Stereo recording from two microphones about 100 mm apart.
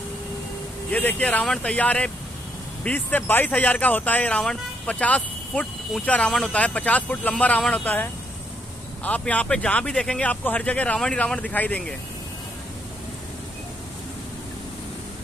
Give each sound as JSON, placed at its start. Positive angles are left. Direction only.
{"t": 0.9, "sound": "speech", "side_deg": 15}